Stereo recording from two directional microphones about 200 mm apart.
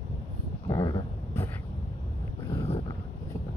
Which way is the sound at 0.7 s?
20° left (ahead or behind).